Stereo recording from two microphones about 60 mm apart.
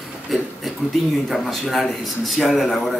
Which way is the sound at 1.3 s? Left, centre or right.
Centre.